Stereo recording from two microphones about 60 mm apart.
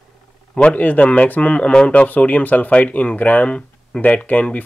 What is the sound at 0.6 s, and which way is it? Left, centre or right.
Speech, left.